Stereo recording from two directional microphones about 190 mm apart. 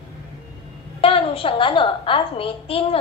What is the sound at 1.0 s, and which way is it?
A woman's voice, 30° left (ahead or behind).